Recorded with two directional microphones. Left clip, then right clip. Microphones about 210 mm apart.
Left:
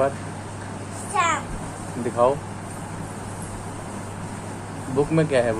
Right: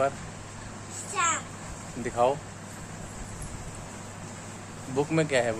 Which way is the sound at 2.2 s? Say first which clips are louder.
Left 5 dB; 20° right (ahead or behind).